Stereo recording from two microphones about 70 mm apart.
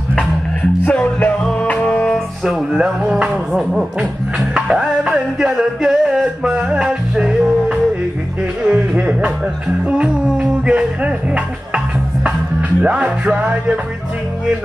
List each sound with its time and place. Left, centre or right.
0.8 s music: centre
2.4 s music: centre